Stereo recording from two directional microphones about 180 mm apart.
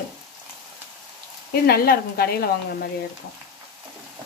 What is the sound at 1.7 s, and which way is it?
Speech, 60° left (ahead or behind).